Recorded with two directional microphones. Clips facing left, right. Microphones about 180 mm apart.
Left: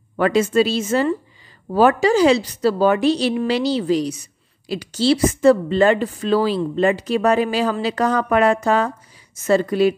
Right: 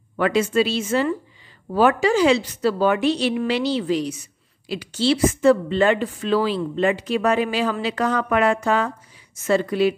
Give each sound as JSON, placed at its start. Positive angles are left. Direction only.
{"t": 0.2, "sound": "a woman's voice", "side_deg": 40}